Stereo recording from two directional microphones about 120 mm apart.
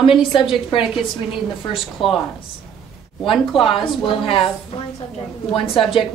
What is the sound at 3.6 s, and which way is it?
Speech, 50° left (ahead or behind).